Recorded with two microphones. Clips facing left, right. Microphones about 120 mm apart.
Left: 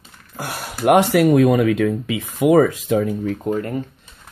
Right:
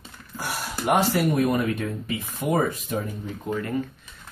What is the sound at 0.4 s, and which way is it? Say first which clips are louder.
Speech: left 5 dB; 60° left (ahead or behind).